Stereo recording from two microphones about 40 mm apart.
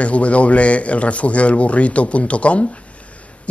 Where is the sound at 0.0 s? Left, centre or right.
Left.